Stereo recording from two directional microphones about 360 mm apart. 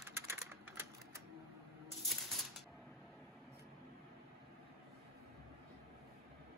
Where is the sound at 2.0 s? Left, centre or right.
Centre.